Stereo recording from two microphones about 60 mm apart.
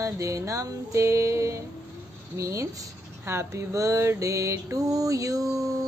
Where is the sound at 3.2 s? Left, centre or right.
Right.